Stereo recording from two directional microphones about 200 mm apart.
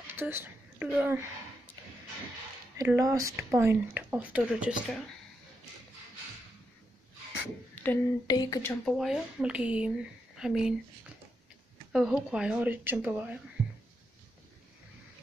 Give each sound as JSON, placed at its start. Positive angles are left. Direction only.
{"t": 0.1, "sound": "speech", "side_deg": -10}
{"t": 2.8, "sound": "speech", "side_deg": -15}
{"t": 7.7, "sound": "a sound", "side_deg": 10}
{"t": 8.3, "sound": "speech", "side_deg": 20}
{"t": 8.8, "sound": "speech", "side_deg": 0}
{"t": 11.9, "sound": "speech", "side_deg": -5}